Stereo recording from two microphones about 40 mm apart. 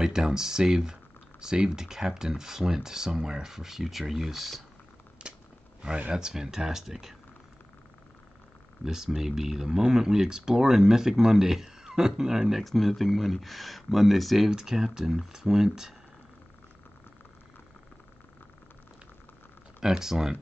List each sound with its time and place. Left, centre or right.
0.0 s speech: centre
6.1 s speech: centre
8.8 s speech: centre
12.7 s speech: centre
14.5 s speech: centre
19.8 s speech: centre